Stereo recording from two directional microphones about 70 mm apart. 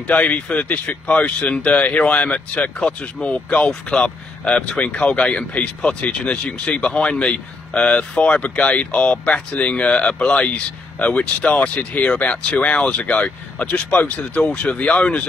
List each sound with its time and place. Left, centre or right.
0.0 s speech: centre